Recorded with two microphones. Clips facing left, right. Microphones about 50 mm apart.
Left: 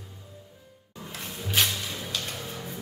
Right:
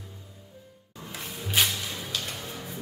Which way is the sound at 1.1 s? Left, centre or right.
Centre.